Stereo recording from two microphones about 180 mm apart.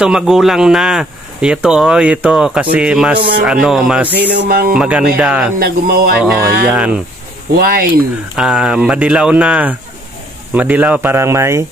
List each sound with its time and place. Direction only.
0.0 s speech: 5° right (ahead or behind)
4.4 s speech: 55° right (ahead or behind)
4.7 s speech: 5° right (ahead or behind)
5.6 s speech: 60° right (ahead or behind)
6.1 s speech: 5° right (ahead or behind)
7.5 s speech: 55° right (ahead or behind)
8.4 s speech: 5° right (ahead or behind)